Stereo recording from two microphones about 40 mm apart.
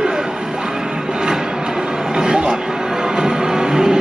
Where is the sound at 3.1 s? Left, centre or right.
Centre.